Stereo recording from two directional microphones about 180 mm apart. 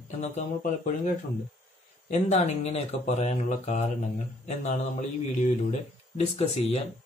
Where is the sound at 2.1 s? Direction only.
40° left (ahead or behind).